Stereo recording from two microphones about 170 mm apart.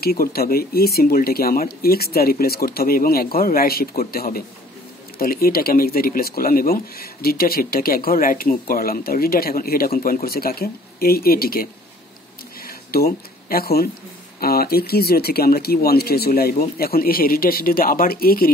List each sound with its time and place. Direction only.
0.0 s speech: 65° left (ahead or behind)
12.6 s a sound: 60° left (ahead or behind)
14.4 s speech: 65° left (ahead or behind)